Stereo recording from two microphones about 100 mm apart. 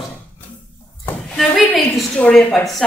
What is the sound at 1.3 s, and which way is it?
A woman's voice, 5° left (ahead or behind).